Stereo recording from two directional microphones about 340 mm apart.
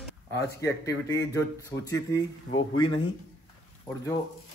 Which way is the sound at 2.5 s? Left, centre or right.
Left.